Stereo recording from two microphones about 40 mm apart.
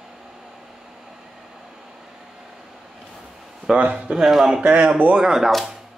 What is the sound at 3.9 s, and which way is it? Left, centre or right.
Speech, centre.